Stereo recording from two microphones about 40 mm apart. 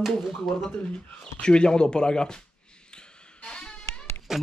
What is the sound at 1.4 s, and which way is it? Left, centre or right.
Speech, left.